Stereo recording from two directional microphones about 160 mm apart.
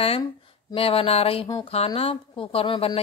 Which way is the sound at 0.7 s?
35° left (ahead or behind).